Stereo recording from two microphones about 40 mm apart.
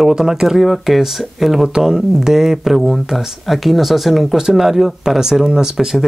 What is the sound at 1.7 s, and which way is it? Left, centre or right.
Speech, centre.